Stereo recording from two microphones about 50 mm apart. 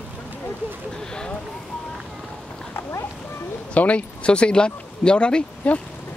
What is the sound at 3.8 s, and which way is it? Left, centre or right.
Speech, left.